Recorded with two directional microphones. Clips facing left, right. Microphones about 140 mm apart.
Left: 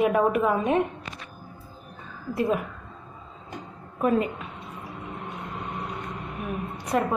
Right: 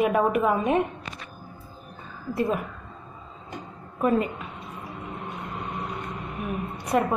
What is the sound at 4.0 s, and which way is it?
Speech, centre (ahead or behind).